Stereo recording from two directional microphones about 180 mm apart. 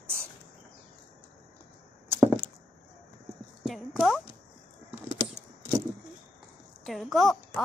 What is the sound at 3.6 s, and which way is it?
Clip-clop, centre (ahead or behind).